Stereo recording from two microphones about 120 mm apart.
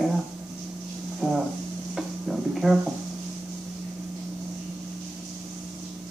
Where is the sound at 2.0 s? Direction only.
Centre (ahead or behind).